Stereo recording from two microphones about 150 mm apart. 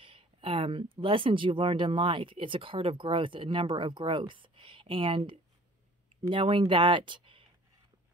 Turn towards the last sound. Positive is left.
turn(degrees=-35)  # may be behind; listen again after turning